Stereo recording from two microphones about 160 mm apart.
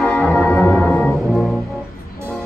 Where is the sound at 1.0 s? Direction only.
5° left (ahead or behind).